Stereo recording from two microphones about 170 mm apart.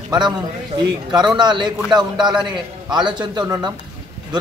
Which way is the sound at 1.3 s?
25° right (ahead or behind).